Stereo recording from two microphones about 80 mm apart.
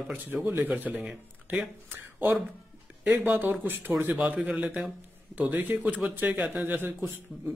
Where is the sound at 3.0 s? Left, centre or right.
Right.